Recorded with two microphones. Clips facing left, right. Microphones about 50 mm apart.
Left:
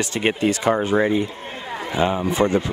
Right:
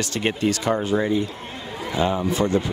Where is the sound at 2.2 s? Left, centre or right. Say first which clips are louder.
Left 2 dB; left.